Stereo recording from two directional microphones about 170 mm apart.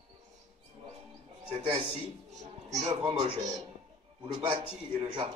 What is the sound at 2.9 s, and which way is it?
A man's voice, 20° right (ahead or behind).